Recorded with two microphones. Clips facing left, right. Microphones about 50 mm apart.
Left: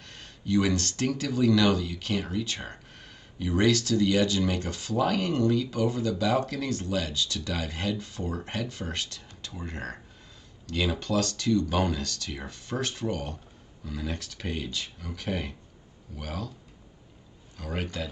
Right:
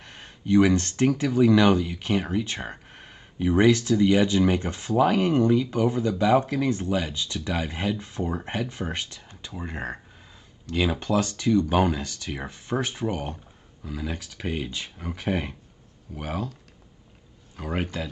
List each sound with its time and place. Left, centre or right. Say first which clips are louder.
0.0 s speech: right 2 dB; right
17.6 s speech: right 4 dB; right